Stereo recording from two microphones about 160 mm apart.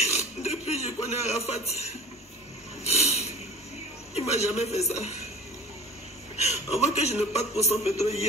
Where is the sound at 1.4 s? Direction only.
40° left (ahead or behind).